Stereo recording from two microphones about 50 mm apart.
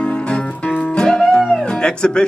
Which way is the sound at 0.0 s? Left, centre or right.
Left.